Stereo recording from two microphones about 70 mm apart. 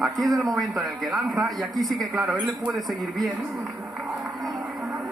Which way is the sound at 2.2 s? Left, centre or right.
Centre.